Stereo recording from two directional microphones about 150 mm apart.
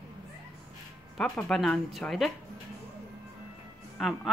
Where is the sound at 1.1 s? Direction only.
Centre (ahead or behind).